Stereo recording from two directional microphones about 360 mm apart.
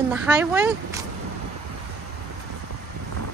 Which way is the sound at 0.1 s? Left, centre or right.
Centre.